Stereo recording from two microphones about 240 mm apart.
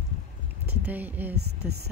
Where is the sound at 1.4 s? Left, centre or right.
Right.